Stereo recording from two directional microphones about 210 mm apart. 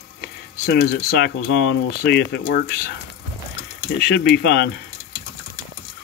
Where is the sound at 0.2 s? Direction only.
50° left (ahead or behind).